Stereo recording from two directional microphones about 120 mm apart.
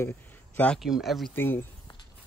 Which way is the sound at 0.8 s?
Centre (ahead or behind).